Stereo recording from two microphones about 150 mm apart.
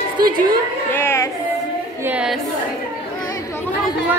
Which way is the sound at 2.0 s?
5° right (ahead or behind).